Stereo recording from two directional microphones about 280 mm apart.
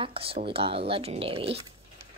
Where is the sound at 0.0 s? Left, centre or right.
Centre.